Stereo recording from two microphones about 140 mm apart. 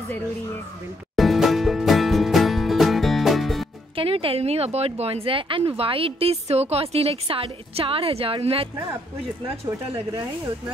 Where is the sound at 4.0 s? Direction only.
40° right (ahead or behind).